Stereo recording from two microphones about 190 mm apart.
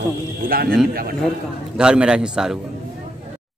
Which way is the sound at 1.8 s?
5° right (ahead or behind).